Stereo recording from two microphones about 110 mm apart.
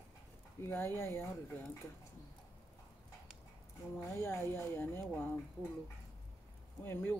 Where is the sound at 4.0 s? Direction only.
20° left (ahead or behind).